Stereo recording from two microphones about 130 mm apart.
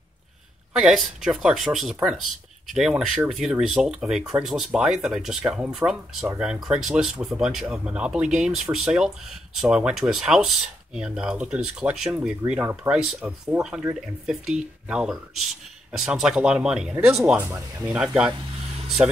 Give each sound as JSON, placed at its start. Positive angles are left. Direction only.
{"t": 0.7, "sound": "speech", "side_deg": 0}